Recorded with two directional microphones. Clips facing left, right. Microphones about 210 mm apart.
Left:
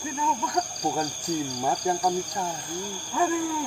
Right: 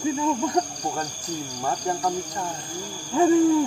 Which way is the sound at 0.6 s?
30° right (ahead or behind).